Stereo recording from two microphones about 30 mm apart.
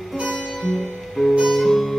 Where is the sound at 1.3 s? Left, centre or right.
Centre.